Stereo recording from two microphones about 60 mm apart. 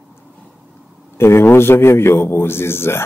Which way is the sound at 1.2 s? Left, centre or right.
Left.